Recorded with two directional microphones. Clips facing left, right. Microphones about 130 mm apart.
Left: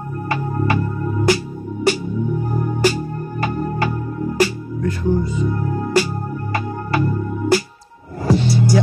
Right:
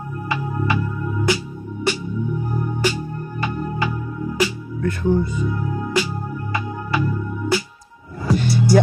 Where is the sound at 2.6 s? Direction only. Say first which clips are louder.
Left 5 dB; 45° left (ahead or behind).